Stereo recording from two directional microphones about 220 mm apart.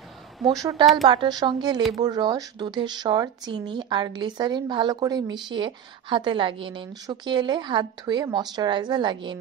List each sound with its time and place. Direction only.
0.6 s speech: 15° right (ahead or behind)